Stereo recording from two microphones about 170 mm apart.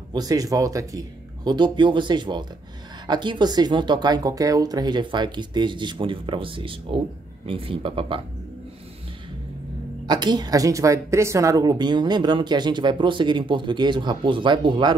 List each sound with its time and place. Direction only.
0.1 s a woman's voice: 20° right (ahead or behind)
10.0 s a woman's voice: 25° right (ahead or behind)